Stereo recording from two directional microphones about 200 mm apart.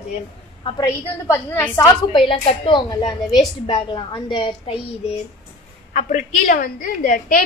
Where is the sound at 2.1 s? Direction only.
25° left (ahead or behind).